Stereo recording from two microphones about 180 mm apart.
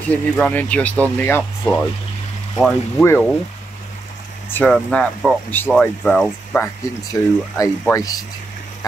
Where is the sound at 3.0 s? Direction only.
15° left (ahead or behind).